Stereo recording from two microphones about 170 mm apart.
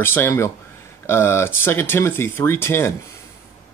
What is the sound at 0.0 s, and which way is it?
Speech, 15° left (ahead or behind).